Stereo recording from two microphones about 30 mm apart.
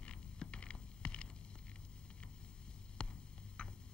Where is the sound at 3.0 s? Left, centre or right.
Left.